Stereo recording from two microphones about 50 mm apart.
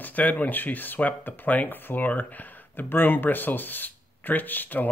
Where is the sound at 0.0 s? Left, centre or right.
Left.